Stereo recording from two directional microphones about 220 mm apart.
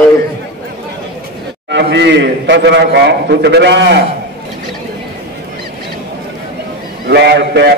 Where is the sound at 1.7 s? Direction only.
50° right (ahead or behind).